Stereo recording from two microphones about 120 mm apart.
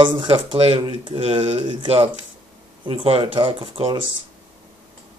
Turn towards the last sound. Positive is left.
turn(degrees=-50)  # may be behind; listen again after turning